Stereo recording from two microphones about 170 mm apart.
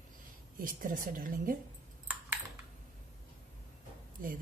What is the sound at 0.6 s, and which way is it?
A woman's voice, 50° right (ahead or behind).